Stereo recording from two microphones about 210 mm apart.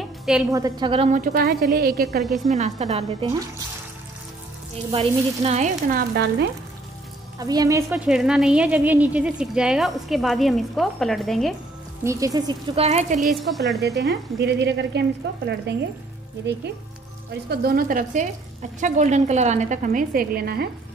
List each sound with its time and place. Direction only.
0.0 s a sound: centre (ahead or behind)
0.5 s speech: 15° right (ahead or behind); by 2.2 s 50° right (ahead or behind)
2.5 s a woman's voice: 30° right (ahead or behind)
4.9 s a woman's voice: 30° right (ahead or behind)
7.3 s speech: 15° right (ahead or behind)
7.9 s speech: 5° right (ahead or behind)
12.0 s speech: 15° right (ahead or behind)
12.8 s a woman's voice: 35° right (ahead or behind)
13.4 s speech: centre (ahead or behind)
13.7 s speech: 55° right (ahead or behind)
17.5 s a woman's voice: 45° right (ahead or behind)